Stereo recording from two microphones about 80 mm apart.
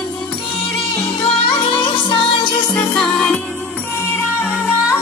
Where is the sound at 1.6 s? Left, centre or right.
Left.